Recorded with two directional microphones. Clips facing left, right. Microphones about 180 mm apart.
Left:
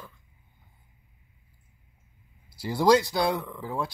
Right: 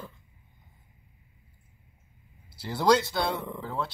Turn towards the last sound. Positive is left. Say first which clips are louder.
# left 1 dB
turn(degrees=10)  # may be behind; listen again after turning